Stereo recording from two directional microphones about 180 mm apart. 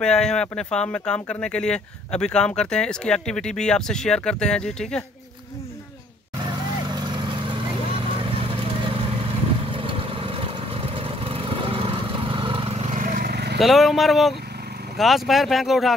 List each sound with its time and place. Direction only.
0.0 s speech: 5° left (ahead or behind)
6.4 s vehicle: 25° right (ahead or behind); by 13.6 s 65° right (ahead or behind)
13.6 s speech: centre (ahead or behind)